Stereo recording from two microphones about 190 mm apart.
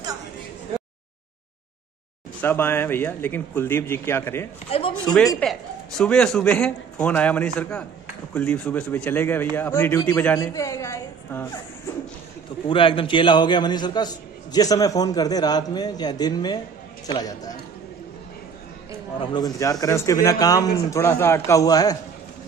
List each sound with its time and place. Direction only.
2.4 s a man's voice: 10° left (ahead or behind)
4.6 s a man's voice: 30° left (ahead or behind)
5.4 s a man's voice: 5° left (ahead or behind)
12.6 s a man's voice: 25° left (ahead or behind)
19.1 s a man's voice: 20° left (ahead or behind)